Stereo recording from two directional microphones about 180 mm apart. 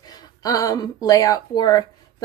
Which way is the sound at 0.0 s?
20° left (ahead or behind).